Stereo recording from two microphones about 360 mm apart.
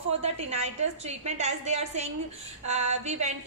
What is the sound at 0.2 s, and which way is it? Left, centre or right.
A woman's voice, centre.